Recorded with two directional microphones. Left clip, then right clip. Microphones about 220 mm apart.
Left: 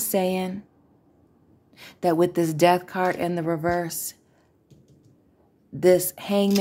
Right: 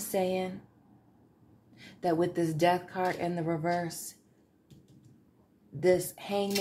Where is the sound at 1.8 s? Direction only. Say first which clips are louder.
Left 8 dB; 40° left (ahead or behind).